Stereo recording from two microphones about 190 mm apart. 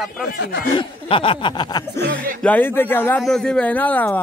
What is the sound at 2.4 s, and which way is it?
A man's voice, 10° left (ahead or behind).